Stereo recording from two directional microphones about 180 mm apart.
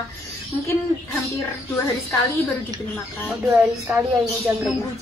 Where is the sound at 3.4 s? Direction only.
10° right (ahead or behind).